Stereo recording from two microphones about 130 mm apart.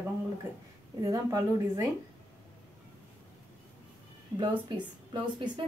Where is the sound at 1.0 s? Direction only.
25° right (ahead or behind).